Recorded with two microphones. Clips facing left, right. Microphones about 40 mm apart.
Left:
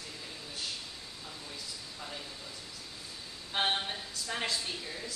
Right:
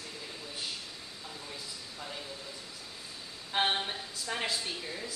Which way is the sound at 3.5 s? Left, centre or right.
Centre.